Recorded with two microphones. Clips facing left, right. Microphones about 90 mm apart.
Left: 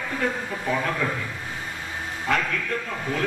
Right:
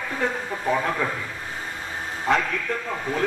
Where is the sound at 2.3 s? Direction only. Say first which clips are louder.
Right 2 dB; 25° right (ahead or behind).